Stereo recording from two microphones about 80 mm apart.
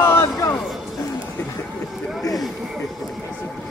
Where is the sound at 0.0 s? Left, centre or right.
Left.